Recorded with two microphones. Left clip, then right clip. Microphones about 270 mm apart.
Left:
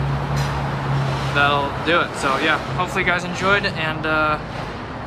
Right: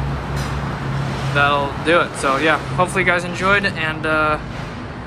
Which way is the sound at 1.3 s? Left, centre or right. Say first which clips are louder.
Right 2 dB; centre.